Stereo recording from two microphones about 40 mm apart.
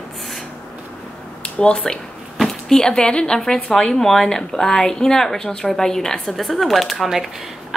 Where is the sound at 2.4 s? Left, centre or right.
Centre.